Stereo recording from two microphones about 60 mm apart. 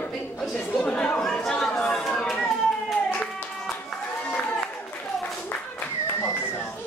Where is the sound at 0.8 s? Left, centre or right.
Centre.